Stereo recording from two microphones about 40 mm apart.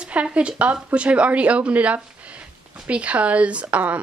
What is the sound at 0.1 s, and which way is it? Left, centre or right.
A woman's voice, right.